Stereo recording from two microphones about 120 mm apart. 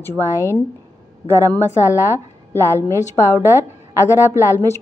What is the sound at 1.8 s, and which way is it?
A woman's voice, 25° left (ahead or behind).